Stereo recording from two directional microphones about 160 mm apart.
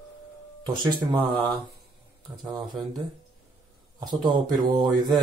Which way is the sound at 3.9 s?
25° right (ahead or behind).